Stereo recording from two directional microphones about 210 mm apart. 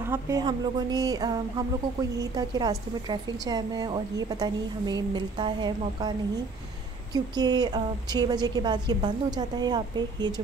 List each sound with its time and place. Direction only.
0.1 s a woman's voice: 15° right (ahead or behind)
7.3 s a woman's voice: 20° right (ahead or behind)